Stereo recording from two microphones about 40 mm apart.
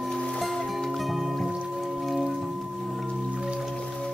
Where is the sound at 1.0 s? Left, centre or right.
Centre.